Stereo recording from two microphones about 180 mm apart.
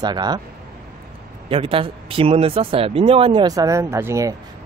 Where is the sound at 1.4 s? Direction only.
30° right (ahead or behind); by 4.3 s 15° right (ahead or behind).